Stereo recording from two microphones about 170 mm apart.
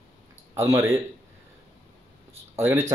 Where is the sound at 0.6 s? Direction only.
20° right (ahead or behind).